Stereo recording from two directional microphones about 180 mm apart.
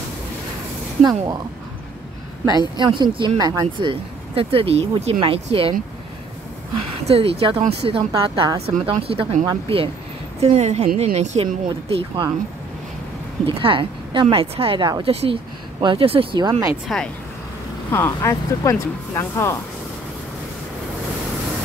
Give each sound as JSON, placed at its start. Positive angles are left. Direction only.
{"t": 1.0, "sound": "speech", "side_deg": -20}
{"t": 2.8, "sound": "speech", "side_deg": -25}
{"t": 7.1, "sound": "speech", "side_deg": -35}
{"t": 13.5, "sound": "speech", "side_deg": -30}
{"t": 17.9, "sound": "speech", "side_deg": 15}